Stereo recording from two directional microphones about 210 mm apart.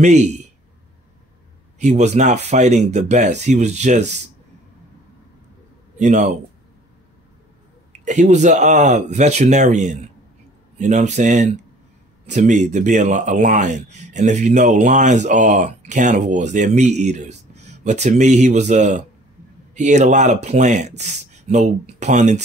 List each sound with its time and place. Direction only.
0.0 s speech: 35° right (ahead or behind)
1.8 s speech: 35° right (ahead or behind)
5.9 s speech: 35° right (ahead or behind)
8.0 s speech: 35° right (ahead or behind)